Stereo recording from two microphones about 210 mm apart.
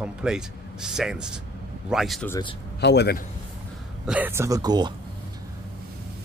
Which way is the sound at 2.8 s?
55° left (ahead or behind).